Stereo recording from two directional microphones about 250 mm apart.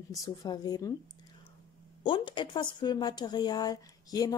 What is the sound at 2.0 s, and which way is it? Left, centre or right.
A woman's voice, centre.